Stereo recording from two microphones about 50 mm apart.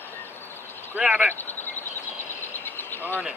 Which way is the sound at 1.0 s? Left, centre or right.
Right.